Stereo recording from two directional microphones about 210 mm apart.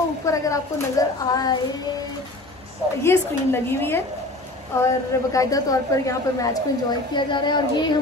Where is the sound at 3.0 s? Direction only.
10° left (ahead or behind).